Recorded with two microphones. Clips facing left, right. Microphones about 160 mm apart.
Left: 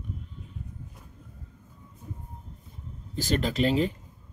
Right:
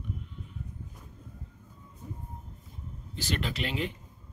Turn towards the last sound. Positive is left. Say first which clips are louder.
# left 8 dB
turn(degrees=40)  # may be behind; listen again after turning